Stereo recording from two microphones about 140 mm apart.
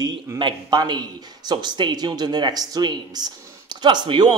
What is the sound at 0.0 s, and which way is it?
A man's voice, 30° right (ahead or behind).